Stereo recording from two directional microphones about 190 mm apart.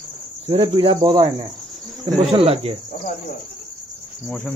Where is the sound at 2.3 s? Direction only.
30° right (ahead or behind).